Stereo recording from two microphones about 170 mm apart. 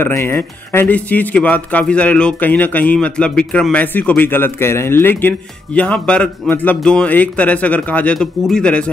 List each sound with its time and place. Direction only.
0.0 s speech: 15° left (ahead or behind)